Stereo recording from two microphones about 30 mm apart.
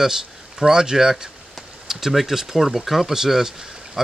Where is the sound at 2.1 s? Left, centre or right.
Centre.